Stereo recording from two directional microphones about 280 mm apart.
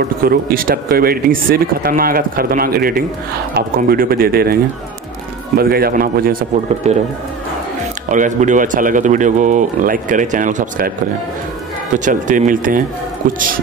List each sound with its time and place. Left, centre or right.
0.2 s speech: right
5.6 s speech: right
8.1 s speech: right
11.9 s speech: right